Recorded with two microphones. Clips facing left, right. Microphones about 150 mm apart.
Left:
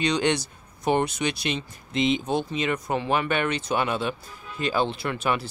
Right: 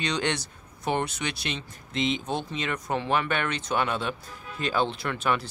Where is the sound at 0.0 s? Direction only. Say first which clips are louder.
Left 5 dB; 10° left (ahead or behind).